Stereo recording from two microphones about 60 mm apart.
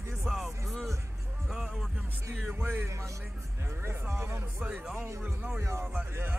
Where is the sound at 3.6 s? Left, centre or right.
Right.